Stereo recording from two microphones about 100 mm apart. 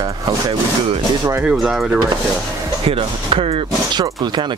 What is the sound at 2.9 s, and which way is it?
Speech, 70° right (ahead or behind).